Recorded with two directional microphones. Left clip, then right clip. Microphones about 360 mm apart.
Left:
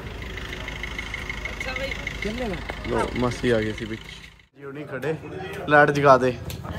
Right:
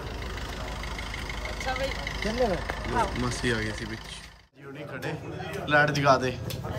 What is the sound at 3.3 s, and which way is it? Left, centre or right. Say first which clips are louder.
Speech: left 6 dB; centre.